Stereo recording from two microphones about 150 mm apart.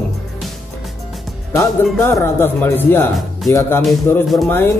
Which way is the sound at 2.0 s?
15° left (ahead or behind).